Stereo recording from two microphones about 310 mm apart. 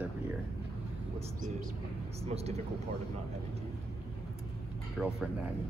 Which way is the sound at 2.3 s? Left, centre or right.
Centre.